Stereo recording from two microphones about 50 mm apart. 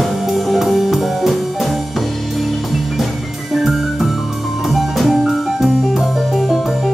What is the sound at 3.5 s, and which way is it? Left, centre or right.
Music, centre.